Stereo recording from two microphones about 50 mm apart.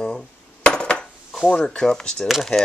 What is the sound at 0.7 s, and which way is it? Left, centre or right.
Dishes, centre.